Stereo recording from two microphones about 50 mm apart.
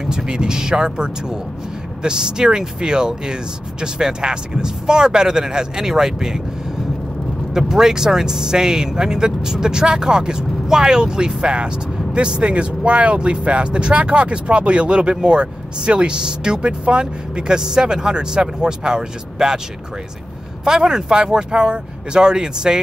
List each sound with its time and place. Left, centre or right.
0.0 s speech: centre
7.5 s speech: centre
20.6 s speech: centre